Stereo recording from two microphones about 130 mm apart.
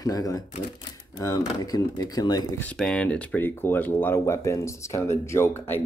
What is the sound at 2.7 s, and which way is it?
Speech, 5° left (ahead or behind).